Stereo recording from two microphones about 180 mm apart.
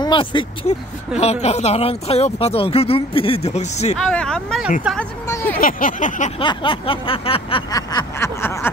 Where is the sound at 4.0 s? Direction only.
5° left (ahead or behind).